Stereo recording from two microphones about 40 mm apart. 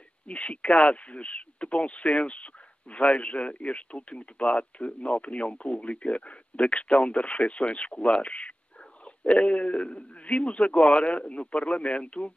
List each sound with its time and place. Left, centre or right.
0.3 s speech: left